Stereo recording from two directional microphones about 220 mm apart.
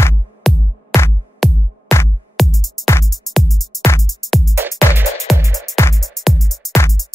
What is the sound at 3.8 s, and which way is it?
Music, 15° left (ahead or behind).